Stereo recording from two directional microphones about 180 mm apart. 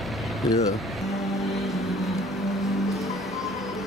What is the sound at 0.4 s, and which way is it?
Speech, 20° left (ahead or behind).